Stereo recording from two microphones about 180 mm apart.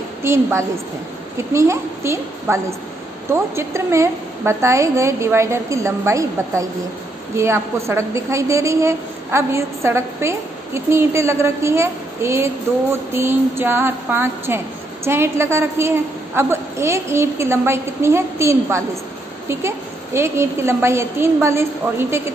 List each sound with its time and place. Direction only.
0.2 s a woman's voice: 15° right (ahead or behind)
20.2 s a woman's voice: 15° right (ahead or behind)